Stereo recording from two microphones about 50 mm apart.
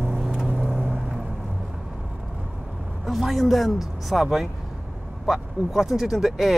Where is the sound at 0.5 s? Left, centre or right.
Right.